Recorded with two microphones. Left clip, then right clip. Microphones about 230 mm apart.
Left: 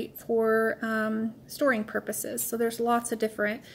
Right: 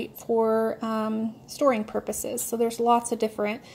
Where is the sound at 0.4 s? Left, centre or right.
Right.